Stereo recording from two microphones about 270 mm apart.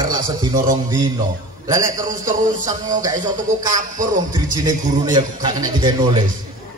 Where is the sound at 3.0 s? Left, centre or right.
Centre.